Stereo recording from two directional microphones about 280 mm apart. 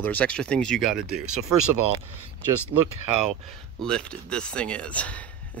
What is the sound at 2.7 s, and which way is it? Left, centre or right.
Speech, right.